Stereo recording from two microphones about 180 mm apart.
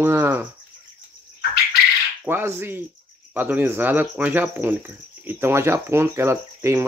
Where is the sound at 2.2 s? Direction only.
10° right (ahead or behind).